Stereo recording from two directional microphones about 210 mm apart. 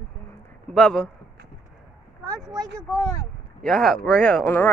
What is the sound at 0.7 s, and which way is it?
Speech, 5° left (ahead or behind).